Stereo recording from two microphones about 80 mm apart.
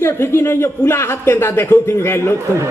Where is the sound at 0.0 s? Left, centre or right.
Left.